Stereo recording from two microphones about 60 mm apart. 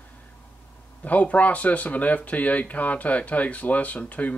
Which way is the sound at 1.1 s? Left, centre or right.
Left.